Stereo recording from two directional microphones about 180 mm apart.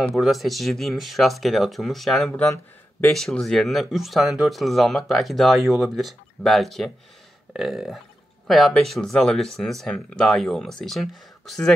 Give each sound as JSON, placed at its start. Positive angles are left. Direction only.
{"t": 0.0, "sound": "speech", "side_deg": 0}